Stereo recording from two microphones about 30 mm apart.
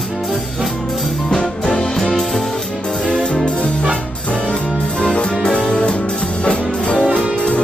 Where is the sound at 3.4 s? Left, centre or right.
Left.